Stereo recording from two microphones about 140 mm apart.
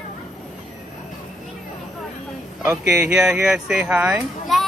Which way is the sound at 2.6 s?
20° right (ahead or behind).